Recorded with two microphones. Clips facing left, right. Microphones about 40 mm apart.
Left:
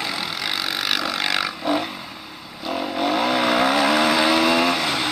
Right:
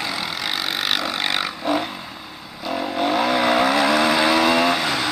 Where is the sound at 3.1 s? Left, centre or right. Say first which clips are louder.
Right 1 dB; centre.